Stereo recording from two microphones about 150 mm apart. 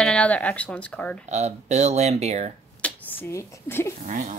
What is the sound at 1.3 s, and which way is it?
Speech, 50° right (ahead or behind).